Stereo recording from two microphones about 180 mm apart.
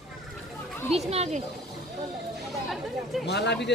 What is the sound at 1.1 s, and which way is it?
Speech, 35° right (ahead or behind).